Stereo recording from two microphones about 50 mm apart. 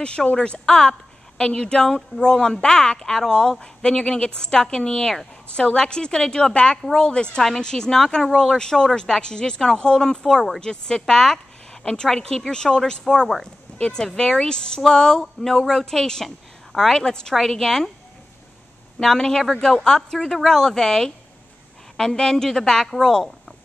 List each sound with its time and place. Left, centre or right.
0.0 s a woman's voice: centre
18.9 s a woman's voice: centre